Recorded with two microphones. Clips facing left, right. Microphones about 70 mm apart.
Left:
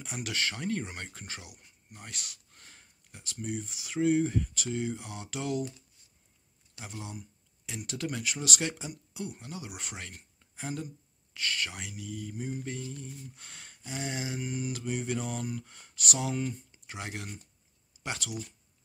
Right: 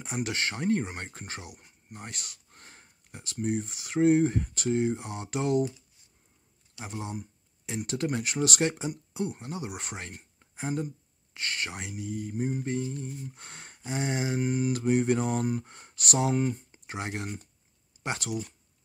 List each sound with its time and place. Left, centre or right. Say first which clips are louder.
0.0 s speech: right 3 dB; right
3.3 s mantra: right 6 dB; right
6.8 s mantra: right 6 dB; right
10.4 s a sound: right 5 dB; right
11.3 s mantra: right 1 dB; right
18.0 s speech: right 5 dB; right